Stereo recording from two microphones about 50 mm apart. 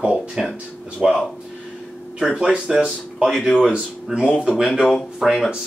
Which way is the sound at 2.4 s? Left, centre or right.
Centre.